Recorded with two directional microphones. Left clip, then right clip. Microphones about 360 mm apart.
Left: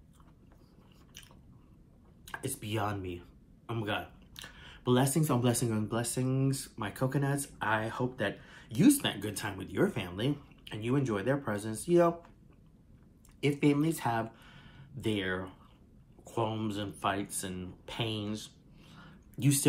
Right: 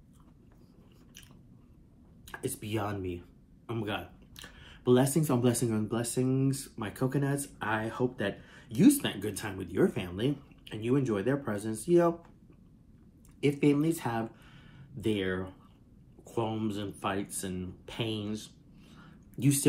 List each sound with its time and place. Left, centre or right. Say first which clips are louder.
2.2 s speech: right 2 dB; centre
13.4 s speech: right 2 dB; centre